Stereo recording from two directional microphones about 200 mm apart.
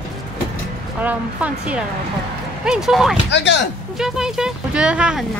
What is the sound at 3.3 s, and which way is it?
Speech, 60° left (ahead or behind).